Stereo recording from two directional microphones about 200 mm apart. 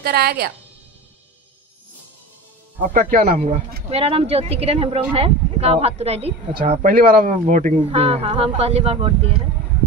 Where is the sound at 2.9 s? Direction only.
40° right (ahead or behind).